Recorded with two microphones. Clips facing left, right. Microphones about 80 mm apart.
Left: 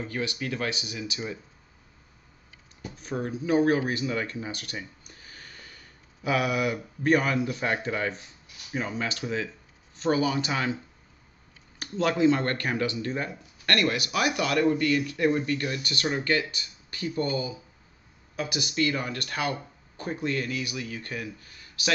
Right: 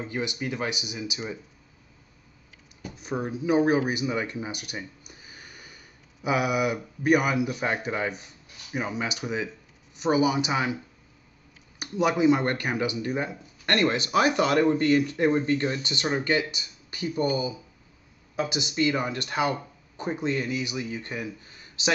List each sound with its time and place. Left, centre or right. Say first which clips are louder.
0.0 s speech: right 1 dB; centre
3.0 s speech: right 1 dB; centre
11.8 s speech: right 1 dB; centre